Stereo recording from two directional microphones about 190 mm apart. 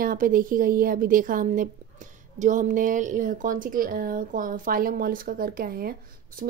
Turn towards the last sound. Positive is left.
turn(degrees=-50)  # may be behind; listen again after turning